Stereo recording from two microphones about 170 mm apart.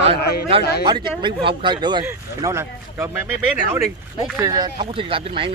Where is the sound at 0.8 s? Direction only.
25° right (ahead or behind).